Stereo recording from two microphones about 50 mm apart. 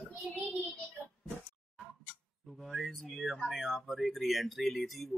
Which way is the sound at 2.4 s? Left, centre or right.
Centre.